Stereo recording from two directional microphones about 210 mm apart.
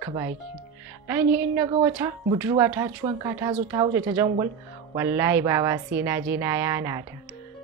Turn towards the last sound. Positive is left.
turn(degrees=-15)  # may be behind; listen again after turning